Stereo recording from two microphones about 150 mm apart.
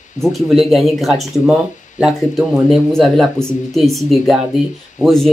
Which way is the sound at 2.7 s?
Centre (ahead or behind).